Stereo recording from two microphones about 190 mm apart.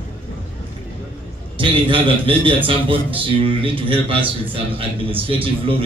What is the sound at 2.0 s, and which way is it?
A man's voice, 25° right (ahead or behind).